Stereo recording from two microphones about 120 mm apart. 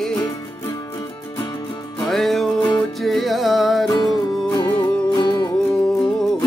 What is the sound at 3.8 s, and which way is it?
Music, 35° left (ahead or behind).